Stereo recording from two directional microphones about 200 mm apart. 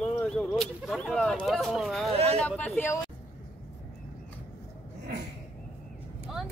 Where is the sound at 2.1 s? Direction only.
30° right (ahead or behind).